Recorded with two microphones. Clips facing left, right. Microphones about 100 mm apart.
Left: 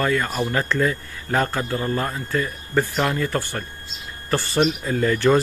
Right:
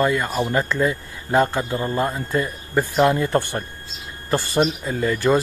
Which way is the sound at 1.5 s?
25° right (ahead or behind).